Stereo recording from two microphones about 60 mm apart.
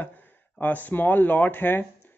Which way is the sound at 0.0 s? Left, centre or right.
Left.